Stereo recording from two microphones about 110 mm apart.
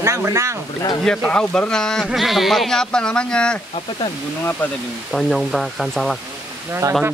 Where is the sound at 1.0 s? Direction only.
5° left (ahead or behind).